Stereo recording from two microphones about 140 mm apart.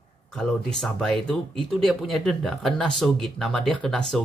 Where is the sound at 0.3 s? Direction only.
Centre (ahead or behind).